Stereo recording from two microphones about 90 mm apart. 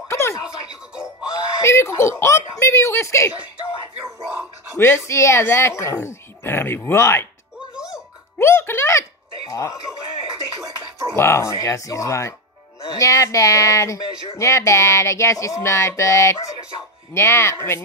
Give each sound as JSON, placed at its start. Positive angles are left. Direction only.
{"t": 0.1, "sound": "a sound", "side_deg": 30}
{"t": 1.6, "sound": "speech", "side_deg": 30}
{"t": 4.7, "sound": "speech", "side_deg": 25}
{"t": 7.7, "sound": "music", "side_deg": -10}
{"t": 8.4, "sound": "music", "side_deg": 30}
{"t": 9.5, "sound": "speech", "side_deg": 35}
{"t": 10.6, "sound": "a sound", "side_deg": -40}
{"t": 11.1, "sound": "speech", "side_deg": 30}